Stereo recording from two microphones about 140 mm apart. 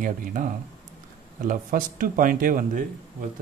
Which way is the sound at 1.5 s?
75° right (ahead or behind).